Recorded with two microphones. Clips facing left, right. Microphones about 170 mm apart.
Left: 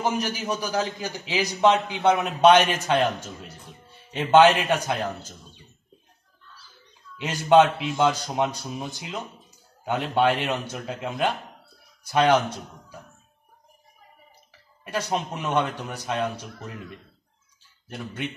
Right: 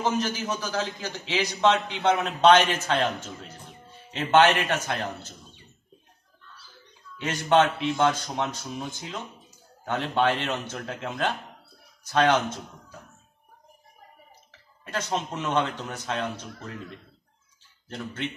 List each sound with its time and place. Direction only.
0.0 s a man's voice: 10° left (ahead or behind)
7.2 s a man's voice: 15° left (ahead or behind)
14.9 s a man's voice: 15° left (ahead or behind)
17.8 s a man's voice: 15° left (ahead or behind)